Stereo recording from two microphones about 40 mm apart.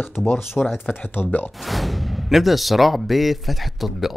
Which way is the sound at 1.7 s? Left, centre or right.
Centre.